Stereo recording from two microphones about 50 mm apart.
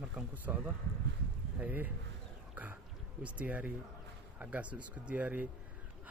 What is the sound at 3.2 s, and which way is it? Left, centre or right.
Speech, right.